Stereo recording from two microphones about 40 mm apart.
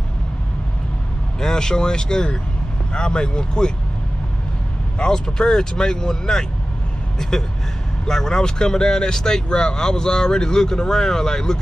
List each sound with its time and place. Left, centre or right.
1.4 s speech: centre
4.9 s speech: centre